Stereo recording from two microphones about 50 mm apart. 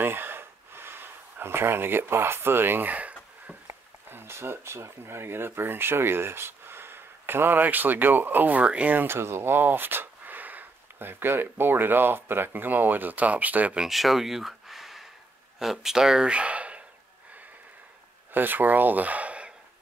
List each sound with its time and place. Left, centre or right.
0.0 s gasp: right
2.9 s a sound: right
3.6 s speech: right
8.9 s speech: right
13.8 s a sound: centre
15.6 s speech: centre; by 16.8 s right
18.3 s speech: right